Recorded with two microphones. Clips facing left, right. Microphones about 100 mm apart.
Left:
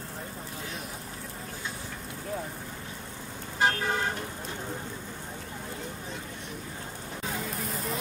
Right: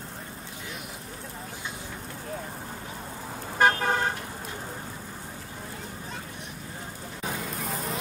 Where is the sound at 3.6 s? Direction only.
50° right (ahead or behind).